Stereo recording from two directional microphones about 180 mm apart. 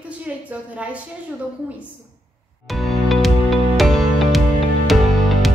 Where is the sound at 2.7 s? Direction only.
Centre (ahead or behind).